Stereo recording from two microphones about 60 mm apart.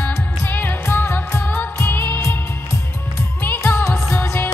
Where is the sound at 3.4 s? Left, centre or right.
Left.